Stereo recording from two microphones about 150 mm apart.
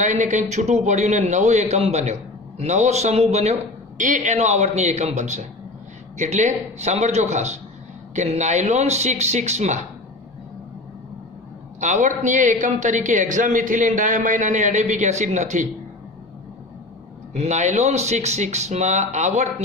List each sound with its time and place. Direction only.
0.0 s a man's voice: 55° right (ahead or behind)
11.8 s a man's voice: 55° right (ahead or behind)
17.3 s a man's voice: 50° right (ahead or behind)